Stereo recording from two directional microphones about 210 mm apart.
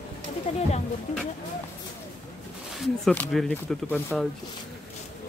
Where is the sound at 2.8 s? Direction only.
5° left (ahead or behind).